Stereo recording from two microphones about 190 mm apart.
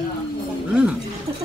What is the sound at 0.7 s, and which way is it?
Speech, 5° right (ahead or behind).